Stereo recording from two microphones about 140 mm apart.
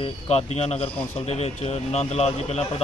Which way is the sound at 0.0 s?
45° left (ahead or behind).